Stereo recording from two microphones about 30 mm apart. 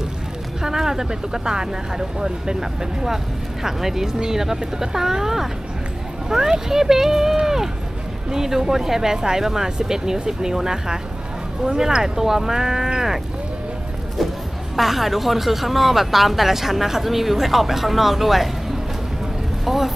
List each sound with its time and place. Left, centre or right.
0.6 s speech: centre
7.3 s run: centre
8.3 s speech: centre
14.8 s speech: centre
19.6 s speech: centre